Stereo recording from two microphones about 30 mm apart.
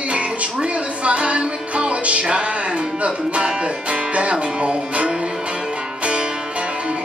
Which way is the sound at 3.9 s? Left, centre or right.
Right.